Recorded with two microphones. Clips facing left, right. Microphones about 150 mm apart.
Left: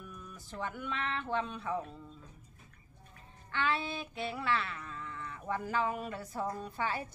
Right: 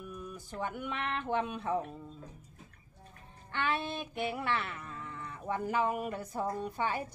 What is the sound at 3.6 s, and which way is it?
A woman's voice, 20° right (ahead or behind).